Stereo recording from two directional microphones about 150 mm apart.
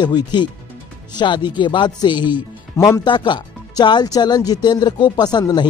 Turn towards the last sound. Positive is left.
turn(degrees=30)  # may be behind; listen again after turning